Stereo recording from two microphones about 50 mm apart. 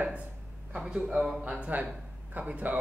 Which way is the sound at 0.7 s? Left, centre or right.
Centre.